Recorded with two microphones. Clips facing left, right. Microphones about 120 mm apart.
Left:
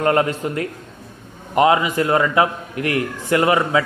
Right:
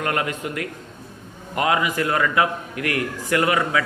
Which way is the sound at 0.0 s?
30° left (ahead or behind).